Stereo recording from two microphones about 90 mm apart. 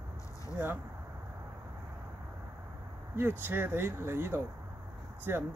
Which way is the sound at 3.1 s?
25° right (ahead or behind).